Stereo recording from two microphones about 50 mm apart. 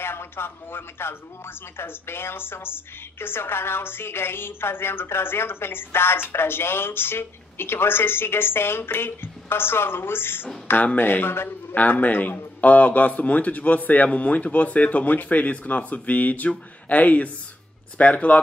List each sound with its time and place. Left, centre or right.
0.0 s a woman's voice: left
11.4 s a man's voice: left